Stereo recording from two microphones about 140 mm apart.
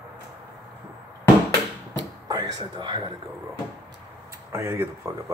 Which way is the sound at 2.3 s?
30° right (ahead or behind).